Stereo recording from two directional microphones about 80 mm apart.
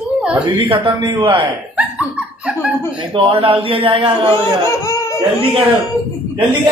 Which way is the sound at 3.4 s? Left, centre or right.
Right.